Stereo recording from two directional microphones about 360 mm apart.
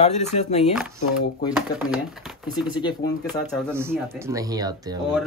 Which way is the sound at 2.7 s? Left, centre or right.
Centre.